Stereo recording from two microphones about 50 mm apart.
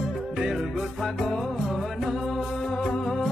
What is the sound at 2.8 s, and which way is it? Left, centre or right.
Music, centre.